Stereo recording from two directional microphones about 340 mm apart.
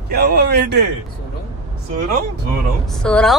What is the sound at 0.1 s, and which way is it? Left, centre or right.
Speech, right.